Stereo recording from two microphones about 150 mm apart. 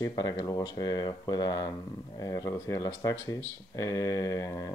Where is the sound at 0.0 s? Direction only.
30° left (ahead or behind).